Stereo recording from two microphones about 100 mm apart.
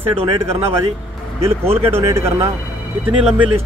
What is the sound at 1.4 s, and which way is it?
Speech, 25° right (ahead or behind).